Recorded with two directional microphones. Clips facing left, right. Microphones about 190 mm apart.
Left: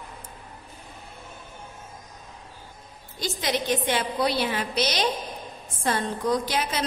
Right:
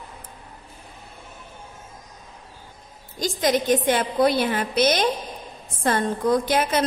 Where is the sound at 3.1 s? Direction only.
45° right (ahead or behind).